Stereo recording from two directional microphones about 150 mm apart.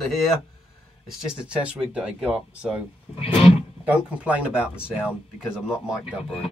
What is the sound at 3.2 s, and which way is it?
Music, 40° left (ahead or behind).